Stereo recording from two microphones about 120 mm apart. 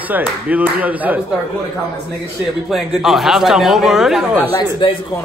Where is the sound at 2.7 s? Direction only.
5° right (ahead or behind).